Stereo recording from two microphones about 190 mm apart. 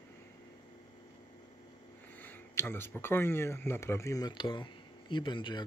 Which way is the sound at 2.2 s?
10° left (ahead or behind).